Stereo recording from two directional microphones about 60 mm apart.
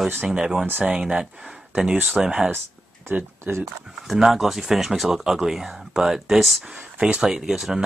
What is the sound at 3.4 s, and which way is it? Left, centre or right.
Speech, right.